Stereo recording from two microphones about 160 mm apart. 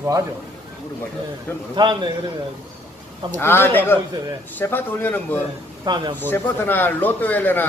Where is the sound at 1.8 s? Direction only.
30° right (ahead or behind).